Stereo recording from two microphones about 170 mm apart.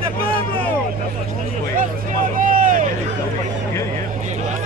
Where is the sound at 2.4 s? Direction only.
50° right (ahead or behind).